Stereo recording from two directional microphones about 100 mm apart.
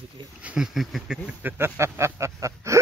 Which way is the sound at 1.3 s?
20° right (ahead or behind).